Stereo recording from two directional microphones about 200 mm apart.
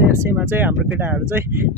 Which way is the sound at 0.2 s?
10° right (ahead or behind).